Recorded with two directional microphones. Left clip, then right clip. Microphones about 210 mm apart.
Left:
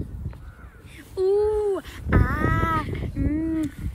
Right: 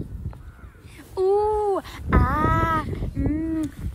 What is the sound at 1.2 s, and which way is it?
A woman's voice, 35° right (ahead or behind).